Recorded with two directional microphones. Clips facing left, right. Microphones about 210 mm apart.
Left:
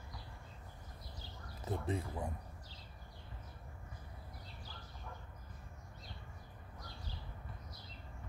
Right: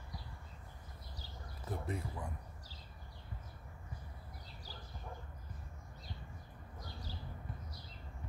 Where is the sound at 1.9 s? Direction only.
25° left (ahead or behind).